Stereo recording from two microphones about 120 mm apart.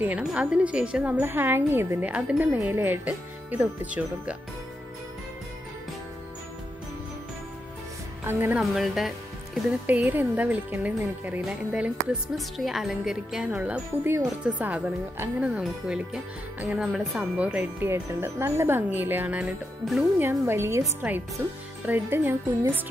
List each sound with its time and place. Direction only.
0.0 s speech: 10° right (ahead or behind)
8.2 s speech: 20° right (ahead or behind)
8.5 s speech: centre (ahead or behind)
9.8 s speech: 15° right (ahead or behind)
17.4 s speech: 15° right (ahead or behind)
19.8 s speech: centre (ahead or behind)
20.2 s a woman's voice: 20° right (ahead or behind)
21.0 s speech: 10° right (ahead or behind)
21.4 s a woman's voice: 25° right (ahead or behind)